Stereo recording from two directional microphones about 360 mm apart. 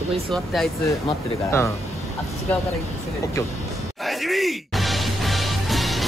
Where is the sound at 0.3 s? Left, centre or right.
Centre.